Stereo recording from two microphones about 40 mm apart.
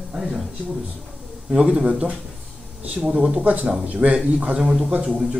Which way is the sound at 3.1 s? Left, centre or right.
Right.